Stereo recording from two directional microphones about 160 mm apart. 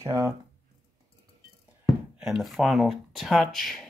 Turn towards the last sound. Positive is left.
turn(degrees=0)  # may be behind; listen again after turning